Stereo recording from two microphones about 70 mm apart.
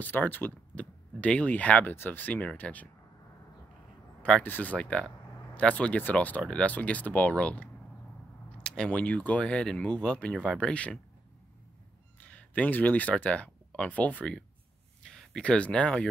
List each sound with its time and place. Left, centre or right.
0.0 s speech: left
4.4 s speech: left
12.2 s speech: left
15.0 s a sound: centre
15.5 s speech: centre